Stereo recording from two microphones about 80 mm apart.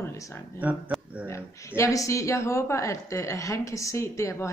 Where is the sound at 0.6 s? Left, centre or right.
Right.